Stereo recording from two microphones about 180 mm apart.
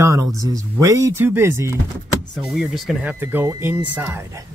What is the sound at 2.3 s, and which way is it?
Speech, centre (ahead or behind).